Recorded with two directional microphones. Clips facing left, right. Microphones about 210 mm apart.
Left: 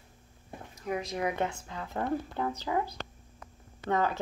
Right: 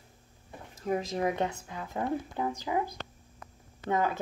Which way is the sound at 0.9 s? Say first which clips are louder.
Right 3 dB; 35° right (ahead or behind).